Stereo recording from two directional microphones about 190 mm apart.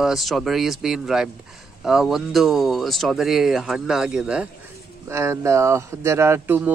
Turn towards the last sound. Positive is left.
turn(degrees=-10)  # may be behind; listen again after turning